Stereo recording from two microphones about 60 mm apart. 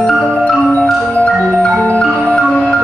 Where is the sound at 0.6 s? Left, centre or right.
Left.